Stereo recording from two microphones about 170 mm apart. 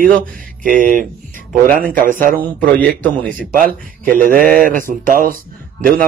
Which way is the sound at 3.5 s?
55° right (ahead or behind).